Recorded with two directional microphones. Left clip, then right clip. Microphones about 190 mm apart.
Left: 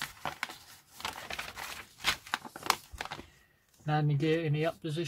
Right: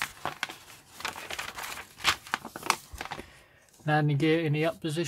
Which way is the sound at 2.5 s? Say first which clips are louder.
Right 1 dB; 20° left (ahead or behind).